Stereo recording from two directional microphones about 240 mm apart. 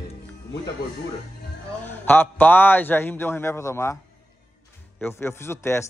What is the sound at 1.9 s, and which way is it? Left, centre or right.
Speech, centre.